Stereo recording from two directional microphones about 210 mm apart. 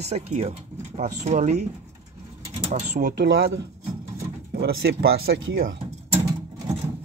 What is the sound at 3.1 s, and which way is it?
Speech, 60° right (ahead or behind).